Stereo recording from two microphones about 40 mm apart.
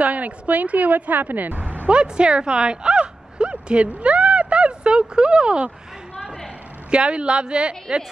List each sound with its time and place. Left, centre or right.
0.0 s speech: right
1.9 s speech: right
4.0 s a sound: right
6.9 s a woman's voice: right